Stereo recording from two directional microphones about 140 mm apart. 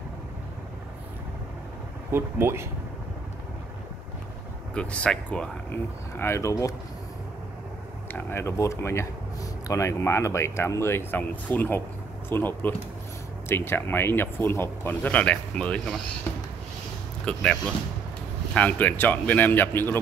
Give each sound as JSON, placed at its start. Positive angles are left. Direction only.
{"t": 2.1, "sound": "speech", "side_deg": -15}
{"t": 4.7, "sound": "speech", "side_deg": 5}
{"t": 8.1, "sound": "speech", "side_deg": 15}
{"t": 16.3, "sound": "a sound", "side_deg": 20}
{"t": 17.2, "sound": "speech", "side_deg": 5}